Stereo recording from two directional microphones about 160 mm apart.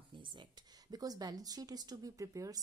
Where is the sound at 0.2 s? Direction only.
30° right (ahead or behind).